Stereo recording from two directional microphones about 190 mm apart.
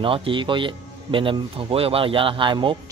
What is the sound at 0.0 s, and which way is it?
A man's voice, 30° right (ahead or behind).